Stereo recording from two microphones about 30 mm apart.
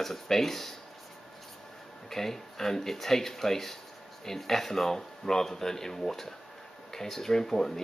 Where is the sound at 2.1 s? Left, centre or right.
Centre.